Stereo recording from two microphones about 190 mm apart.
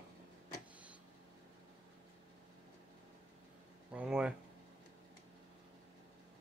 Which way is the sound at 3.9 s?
5° right (ahead or behind).